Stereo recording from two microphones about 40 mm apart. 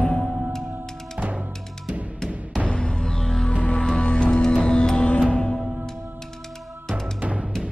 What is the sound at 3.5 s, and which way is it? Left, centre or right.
Music, left.